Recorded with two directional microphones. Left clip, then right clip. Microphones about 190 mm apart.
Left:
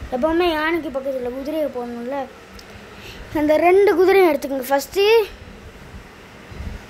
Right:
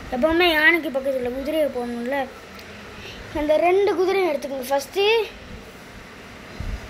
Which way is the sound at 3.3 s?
30° left (ahead or behind).